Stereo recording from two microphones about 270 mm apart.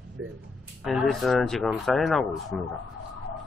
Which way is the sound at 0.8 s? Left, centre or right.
Centre.